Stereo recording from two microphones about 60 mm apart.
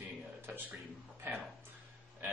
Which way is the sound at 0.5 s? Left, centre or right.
Right.